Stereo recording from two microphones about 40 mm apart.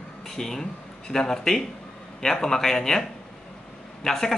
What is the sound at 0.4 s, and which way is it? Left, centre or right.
Speech, centre.